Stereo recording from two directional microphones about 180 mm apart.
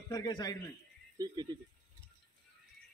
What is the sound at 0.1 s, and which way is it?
Speech, 20° left (ahead or behind).